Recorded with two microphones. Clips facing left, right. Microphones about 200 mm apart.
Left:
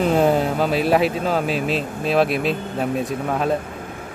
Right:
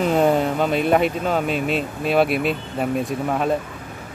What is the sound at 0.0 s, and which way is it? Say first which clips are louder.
Speech: even; centre (ahead or behind).